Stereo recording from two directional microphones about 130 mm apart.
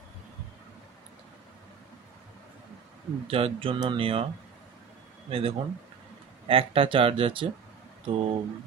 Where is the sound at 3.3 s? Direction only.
45° right (ahead or behind).